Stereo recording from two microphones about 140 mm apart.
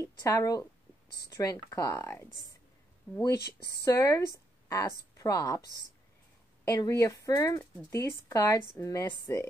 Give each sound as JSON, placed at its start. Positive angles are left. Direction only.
{"t": 0.0, "sound": "a woman's voice", "side_deg": 20}
{"t": 6.7, "sound": "speech", "side_deg": 20}